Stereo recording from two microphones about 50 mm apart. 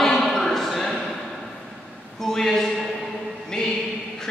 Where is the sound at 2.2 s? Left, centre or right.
Centre.